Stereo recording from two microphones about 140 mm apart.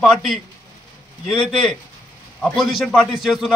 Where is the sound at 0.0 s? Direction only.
Centre (ahead or behind).